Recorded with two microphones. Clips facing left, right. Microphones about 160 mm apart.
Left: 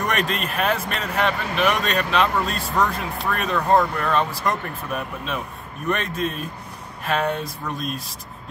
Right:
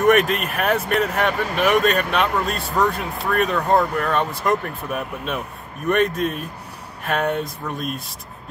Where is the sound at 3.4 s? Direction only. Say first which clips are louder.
Left 2 dB; 10° right (ahead or behind).